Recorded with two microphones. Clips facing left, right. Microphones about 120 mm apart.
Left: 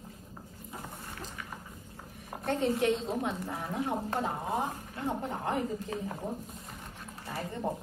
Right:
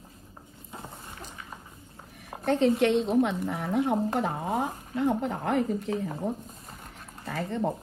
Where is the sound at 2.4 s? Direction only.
80° right.